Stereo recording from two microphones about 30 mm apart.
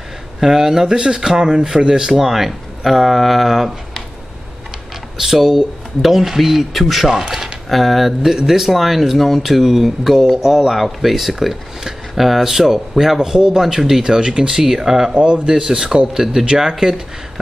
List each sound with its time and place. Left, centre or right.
0.4 s speech: centre
2.2 s speech: centre
5.1 s speech: centre
7.1 s speech: centre
7.7 s speech: centre
8.5 s speech: centre
8.7 s speech: centre
10.8 s speech: centre
13.2 s speech: right
14.5 s speech: centre